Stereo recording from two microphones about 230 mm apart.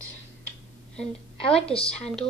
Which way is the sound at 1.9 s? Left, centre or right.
Centre.